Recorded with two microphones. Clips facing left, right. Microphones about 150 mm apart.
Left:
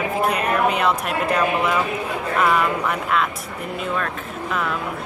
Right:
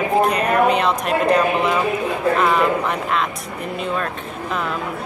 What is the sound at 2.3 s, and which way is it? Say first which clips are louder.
Speech: left 1 dB; 25° right (ahead or behind).